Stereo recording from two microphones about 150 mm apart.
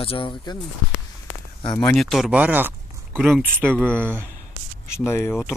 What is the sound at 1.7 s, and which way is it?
Speech, 5° left (ahead or behind).